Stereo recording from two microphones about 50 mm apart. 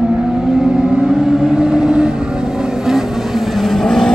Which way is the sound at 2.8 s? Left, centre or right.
Centre.